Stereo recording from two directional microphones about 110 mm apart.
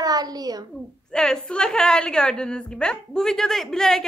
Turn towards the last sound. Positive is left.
turn(degrees=5)  # may be behind; listen again after turning